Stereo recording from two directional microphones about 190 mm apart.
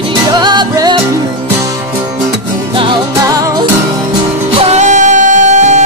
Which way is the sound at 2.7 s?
25° right (ahead or behind).